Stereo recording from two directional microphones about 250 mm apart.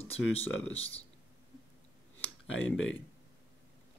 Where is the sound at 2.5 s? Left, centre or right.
Left.